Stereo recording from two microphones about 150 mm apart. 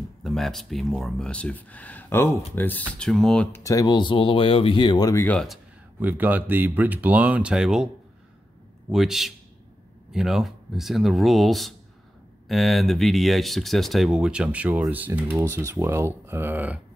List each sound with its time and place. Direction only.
0.2 s speech: centre (ahead or behind)
3.6 s speech: 25° left (ahead or behind)
5.2 s speech: 5° left (ahead or behind)
5.9 s speech: 10° right (ahead or behind)
8.9 s speech: centre (ahead or behind)